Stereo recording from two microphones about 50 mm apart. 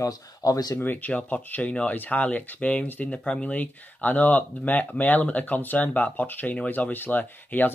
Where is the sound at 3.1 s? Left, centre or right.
Left.